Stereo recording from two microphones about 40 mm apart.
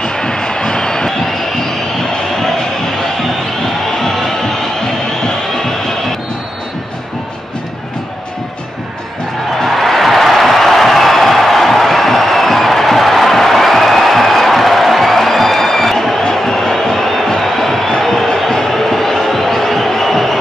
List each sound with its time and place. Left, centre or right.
0.0 s a sound: centre
3.6 s music: centre
9.6 s music: centre